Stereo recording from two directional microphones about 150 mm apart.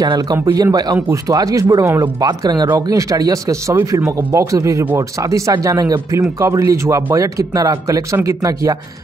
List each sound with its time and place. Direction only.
0.0 s speech: 25° right (ahead or behind)